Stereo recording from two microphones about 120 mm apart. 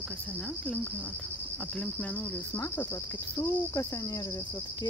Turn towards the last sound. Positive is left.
turn(degrees=25)  # may be behind; listen again after turning